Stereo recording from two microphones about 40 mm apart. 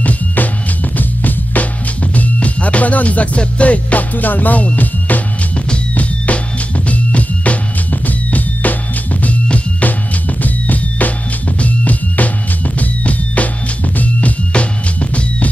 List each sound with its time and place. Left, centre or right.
0.0 s music: left
14.5 s music: left